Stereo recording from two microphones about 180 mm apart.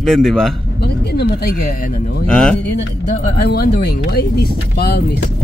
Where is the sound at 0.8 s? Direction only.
60° left (ahead or behind).